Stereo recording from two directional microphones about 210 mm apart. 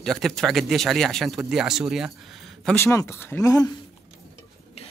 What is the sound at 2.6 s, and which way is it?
Speech, 10° left (ahead or behind).